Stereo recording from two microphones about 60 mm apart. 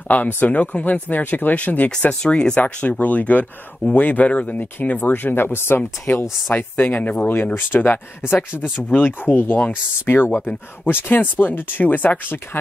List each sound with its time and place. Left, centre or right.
0.4 s speech: left
2.6 s speech: left